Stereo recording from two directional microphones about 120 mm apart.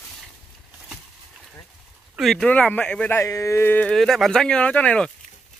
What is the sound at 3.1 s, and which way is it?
Speech, 25° left (ahead or behind).